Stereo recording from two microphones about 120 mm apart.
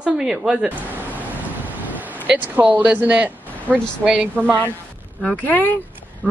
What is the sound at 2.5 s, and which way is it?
A woman's voice, 10° right (ahead or behind).